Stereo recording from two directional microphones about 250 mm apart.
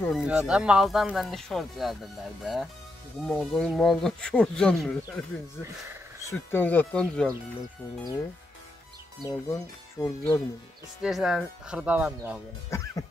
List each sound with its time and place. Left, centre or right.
0.0 s speech: centre
6.3 s speech: centre
9.2 s speech: centre
11.0 s speech: centre
12.6 s speech: centre